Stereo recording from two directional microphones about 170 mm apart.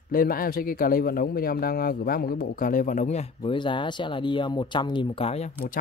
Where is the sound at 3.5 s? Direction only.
30° left (ahead or behind).